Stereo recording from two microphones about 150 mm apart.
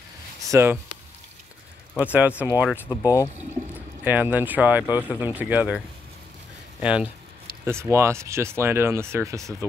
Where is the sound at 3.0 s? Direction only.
25° left (ahead or behind).